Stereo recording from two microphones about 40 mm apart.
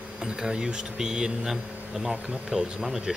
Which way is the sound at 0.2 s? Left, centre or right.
Centre.